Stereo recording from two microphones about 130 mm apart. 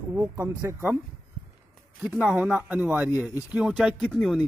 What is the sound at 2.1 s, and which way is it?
A man's voice, 10° right (ahead or behind).